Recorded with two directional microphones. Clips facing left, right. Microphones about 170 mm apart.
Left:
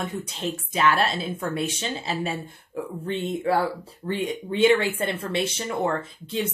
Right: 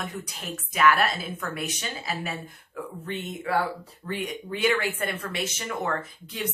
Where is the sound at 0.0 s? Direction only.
25° left (ahead or behind).